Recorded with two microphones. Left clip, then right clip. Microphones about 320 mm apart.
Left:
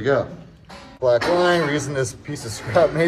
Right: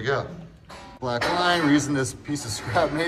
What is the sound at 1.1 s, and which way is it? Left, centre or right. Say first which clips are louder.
Speech: left 6 dB; centre.